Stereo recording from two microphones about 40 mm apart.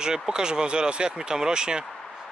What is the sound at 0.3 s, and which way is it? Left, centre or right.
Speech, centre.